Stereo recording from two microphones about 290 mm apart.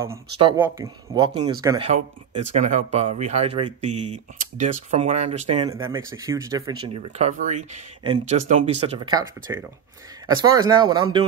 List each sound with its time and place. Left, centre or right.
0.0 s speech: centre